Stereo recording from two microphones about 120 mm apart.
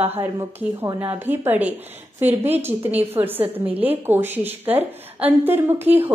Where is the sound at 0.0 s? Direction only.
20° right (ahead or behind).